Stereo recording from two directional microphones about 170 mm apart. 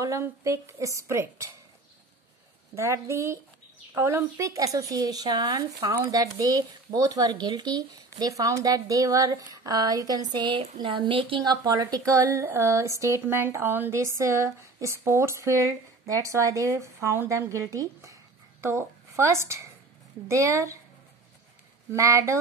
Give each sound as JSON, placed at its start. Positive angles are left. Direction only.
{"t": 0.0, "sound": "a woman's voice", "side_deg": -20}
{"t": 2.7, "sound": "a woman's voice", "side_deg": -15}
{"t": 21.9, "sound": "a woman's voice", "side_deg": -20}